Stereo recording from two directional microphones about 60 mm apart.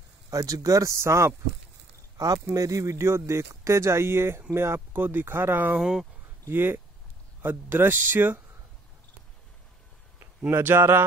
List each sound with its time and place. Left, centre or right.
0.3 s speech: right
2.1 s speech: right
4.7 s speech: right
5.8 s speech: centre
6.4 s speech: right
10.5 s speech: right